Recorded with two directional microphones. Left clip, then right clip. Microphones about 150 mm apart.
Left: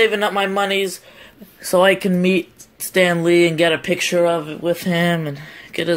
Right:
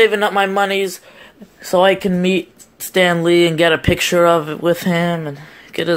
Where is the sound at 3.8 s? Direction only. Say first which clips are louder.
Right 4 dB; 15° right (ahead or behind).